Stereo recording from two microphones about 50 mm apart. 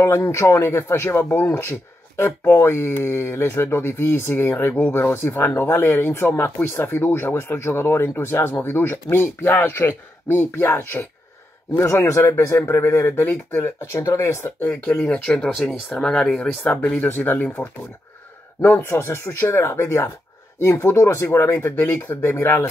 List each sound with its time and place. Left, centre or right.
0.0 s speech: left
11.8 s speech: left
13.6 s speech: left
14.4 s speech: left
15.3 s speech: centre
16.9 s speech: left
18.6 s speech: left
18.9 s speech: left
21.6 s speech: left